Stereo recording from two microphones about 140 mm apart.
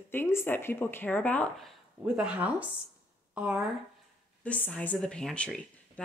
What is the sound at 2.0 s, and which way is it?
Speech, 5° right (ahead or behind).